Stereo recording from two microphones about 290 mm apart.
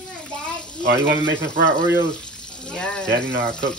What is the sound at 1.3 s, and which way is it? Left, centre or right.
Speech, right.